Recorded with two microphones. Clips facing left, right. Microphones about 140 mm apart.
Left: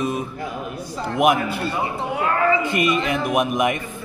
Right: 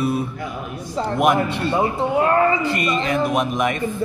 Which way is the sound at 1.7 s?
30° right (ahead or behind).